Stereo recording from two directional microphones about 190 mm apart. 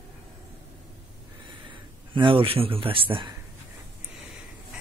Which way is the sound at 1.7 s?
25° right (ahead or behind).